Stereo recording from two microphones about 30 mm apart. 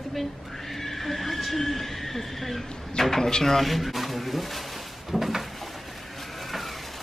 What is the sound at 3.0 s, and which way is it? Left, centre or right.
Speech, centre.